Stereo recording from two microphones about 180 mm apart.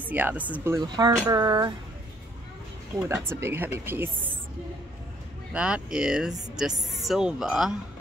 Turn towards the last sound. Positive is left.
turn(degrees=0)  # may be behind; listen again after turning